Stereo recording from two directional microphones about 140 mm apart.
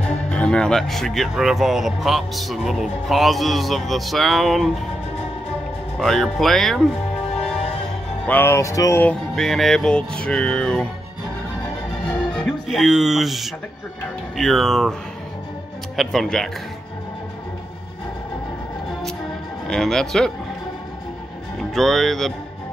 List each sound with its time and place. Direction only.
0.3 s speech: 5° left (ahead or behind)
5.9 s speech: centre (ahead or behind)
8.3 s speech: 15° left (ahead or behind)
9.3 s speech: centre (ahead or behind)
12.3 s speech: 5° left (ahead or behind)
16.0 s speech: centre (ahead or behind)
19.7 s speech: 5° left (ahead or behind)
21.5 s speech: centre (ahead or behind)